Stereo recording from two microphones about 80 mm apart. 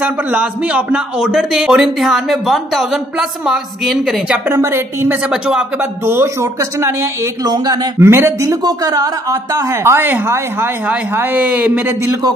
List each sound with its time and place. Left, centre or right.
0.0 s a man's voice: centre
4.5 s speech: right
5.3 s speech: centre
5.8 s a woman's voice: right
7.4 s speech: right
8.0 s a woman's voice: right
8.6 s a woman's voice: right